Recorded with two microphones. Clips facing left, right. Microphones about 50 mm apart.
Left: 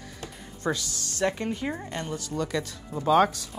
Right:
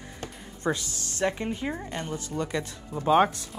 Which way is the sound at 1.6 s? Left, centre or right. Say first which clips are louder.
Even; centre.